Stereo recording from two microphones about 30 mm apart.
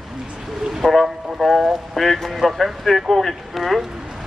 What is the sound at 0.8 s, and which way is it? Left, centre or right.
A man's voice, centre.